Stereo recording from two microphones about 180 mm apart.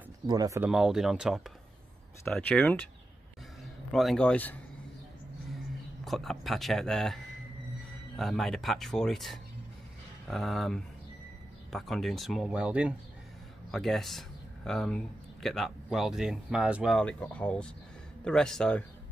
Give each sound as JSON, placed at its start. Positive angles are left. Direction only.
{"t": 0.3, "sound": "speech", "side_deg": -20}
{"t": 0.6, "sound": "speech", "side_deg": -5}
{"t": 3.9, "sound": "speech", "side_deg": 0}
{"t": 6.0, "sound": "speech", "side_deg": 0}
{"t": 8.2, "sound": "speech", "side_deg": 0}